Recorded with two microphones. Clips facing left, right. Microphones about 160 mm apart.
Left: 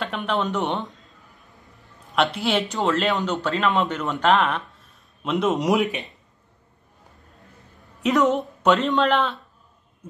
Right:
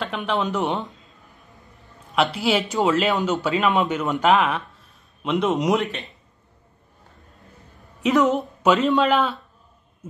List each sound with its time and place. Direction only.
0.0 s a man's voice: centre (ahead or behind)
2.1 s a man's voice: centre (ahead or behind)
8.0 s a man's voice: centre (ahead or behind)